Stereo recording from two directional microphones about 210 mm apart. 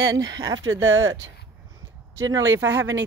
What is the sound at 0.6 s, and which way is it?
Speech, 70° right (ahead or behind).